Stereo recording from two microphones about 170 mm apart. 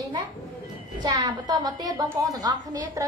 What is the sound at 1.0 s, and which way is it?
A woman's voice, 25° right (ahead or behind).